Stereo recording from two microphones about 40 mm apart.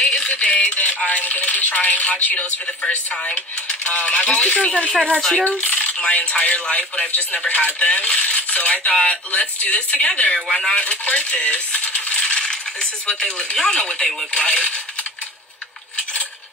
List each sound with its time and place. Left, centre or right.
0.0 s music: left
0.3 s speech: left
5.4 s speech: left
10.7 s coin: left
13.1 s speech: left